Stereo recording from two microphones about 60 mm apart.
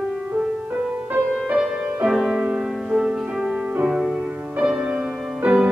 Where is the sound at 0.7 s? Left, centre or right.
Centre.